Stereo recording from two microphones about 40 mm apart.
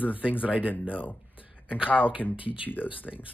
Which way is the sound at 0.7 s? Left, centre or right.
Left.